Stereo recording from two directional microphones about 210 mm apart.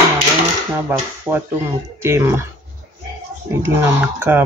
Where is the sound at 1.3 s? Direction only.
10° right (ahead or behind).